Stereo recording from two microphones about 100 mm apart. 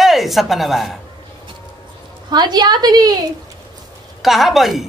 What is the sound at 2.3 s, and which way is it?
Speech, 45° right (ahead or behind).